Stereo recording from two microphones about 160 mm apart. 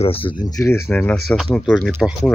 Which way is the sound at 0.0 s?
35° left (ahead or behind).